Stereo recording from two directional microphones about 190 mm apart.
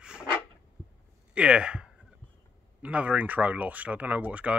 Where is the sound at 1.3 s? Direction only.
5° right (ahead or behind).